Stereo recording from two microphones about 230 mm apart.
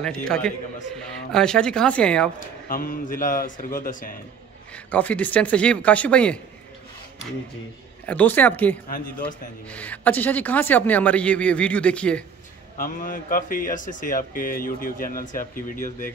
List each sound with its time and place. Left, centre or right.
0.0 s speech: centre
2.4 s speech: left
4.7 s speech: centre
8.1 s speech: centre
12.7 s speech: left